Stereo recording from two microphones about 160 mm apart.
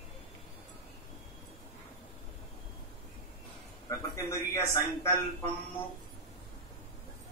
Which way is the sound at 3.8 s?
20° left (ahead or behind).